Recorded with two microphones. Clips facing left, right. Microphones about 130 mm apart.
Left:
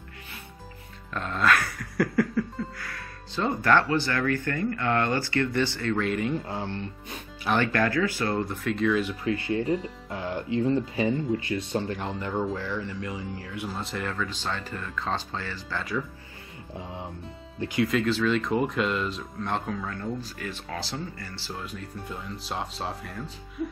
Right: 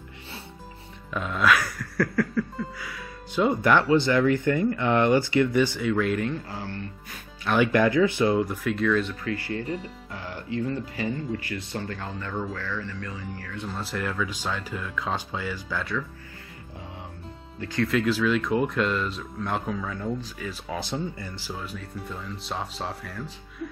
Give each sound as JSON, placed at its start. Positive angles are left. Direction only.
{"t": 1.1, "sound": "music", "side_deg": -5}
{"t": 2.0, "sound": "speech", "side_deg": 5}
{"t": 2.8, "sound": "speech", "side_deg": -5}
{"t": 6.3, "sound": "speech", "side_deg": 20}
{"t": 7.5, "sound": "speech", "side_deg": -10}
{"t": 8.3, "sound": "speech", "side_deg": -5}
{"t": 9.2, "sound": "speech", "side_deg": 20}
{"t": 13.7, "sound": "speech", "side_deg": 0}
{"t": 17.6, "sound": "speech", "side_deg": 15}
{"t": 17.8, "sound": "speech", "side_deg": 0}
{"t": 20.7, "sound": "speech", "side_deg": -20}
{"t": 21.5, "sound": "speech", "side_deg": 0}